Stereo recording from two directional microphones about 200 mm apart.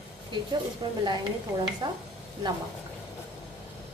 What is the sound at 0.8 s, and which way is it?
A woman's voice, 20° right (ahead or behind).